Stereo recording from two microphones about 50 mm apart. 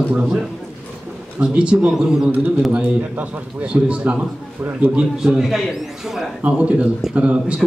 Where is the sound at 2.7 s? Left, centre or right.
Right.